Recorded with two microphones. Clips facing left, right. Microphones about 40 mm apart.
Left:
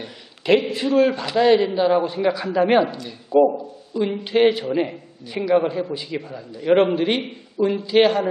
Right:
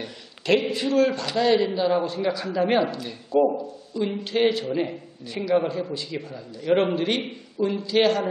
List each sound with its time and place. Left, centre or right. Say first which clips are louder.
0.0 s a man's voice: left 3 dB; centre
7.2 s speech: left 3 dB; centre
7.6 s a man's voice: left 4 dB; centre